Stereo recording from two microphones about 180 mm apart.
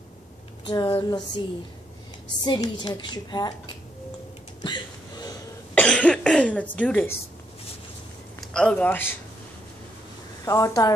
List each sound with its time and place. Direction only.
0.7 s a woman's voice: 20° left (ahead or behind)
2.4 s a woman's voice: 25° left (ahead or behind)
4.6 s a sound: 25° left (ahead or behind)
5.8 s cough: 5° left (ahead or behind)
8.4 s a man's voice: 5° left (ahead or behind)
10.4 s a woman's voice: 20° left (ahead or behind)